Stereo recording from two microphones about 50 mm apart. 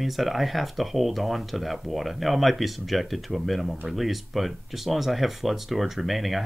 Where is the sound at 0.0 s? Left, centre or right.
Centre.